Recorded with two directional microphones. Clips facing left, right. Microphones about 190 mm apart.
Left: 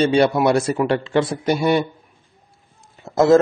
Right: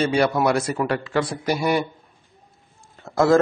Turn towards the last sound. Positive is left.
turn(degrees=20)  # may be behind; listen again after turning